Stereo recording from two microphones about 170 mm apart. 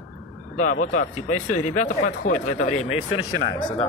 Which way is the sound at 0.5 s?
50° left (ahead or behind).